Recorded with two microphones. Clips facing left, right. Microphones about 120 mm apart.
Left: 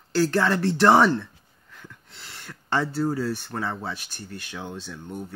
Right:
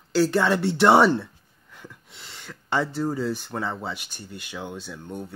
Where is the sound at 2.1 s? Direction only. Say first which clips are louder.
Even; centre (ahead or behind).